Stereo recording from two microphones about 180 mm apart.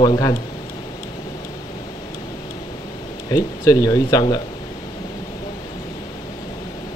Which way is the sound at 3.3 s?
20° left (ahead or behind).